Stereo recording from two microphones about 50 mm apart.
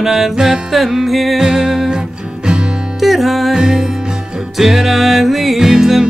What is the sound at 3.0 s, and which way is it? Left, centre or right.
Music, centre.